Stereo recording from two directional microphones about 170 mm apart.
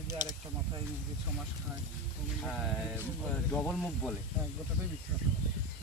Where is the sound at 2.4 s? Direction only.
Centre (ahead or behind).